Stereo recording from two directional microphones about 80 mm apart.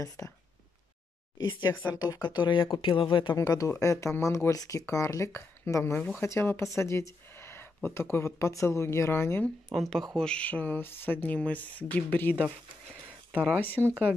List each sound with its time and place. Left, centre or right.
0.2 s speech: left
1.9 s speech: left
2.2 s speech: left
3.3 s speech: left
9.7 s speech: centre
10.1 s speech: centre
13.3 s speech: centre
13.6 s speech: left